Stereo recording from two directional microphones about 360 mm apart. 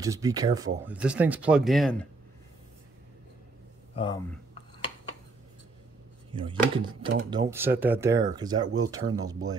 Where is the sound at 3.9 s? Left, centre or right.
Centre.